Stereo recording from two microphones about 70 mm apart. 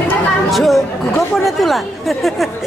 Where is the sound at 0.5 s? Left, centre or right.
Centre.